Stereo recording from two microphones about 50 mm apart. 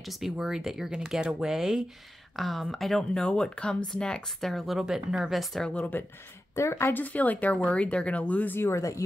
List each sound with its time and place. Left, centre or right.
0.0 s speech: centre
2.3 s speech: centre
3.2 s speech: centre
4.4 s speech: centre
5.9 s speech: left
6.5 s speech: left
6.9 s speech: left
8.5 s speech: left